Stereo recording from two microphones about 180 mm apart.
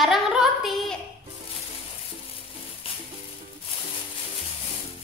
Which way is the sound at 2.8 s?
30° left (ahead or behind).